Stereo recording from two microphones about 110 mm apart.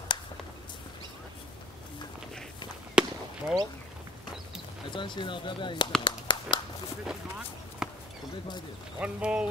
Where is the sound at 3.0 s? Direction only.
10° right (ahead or behind).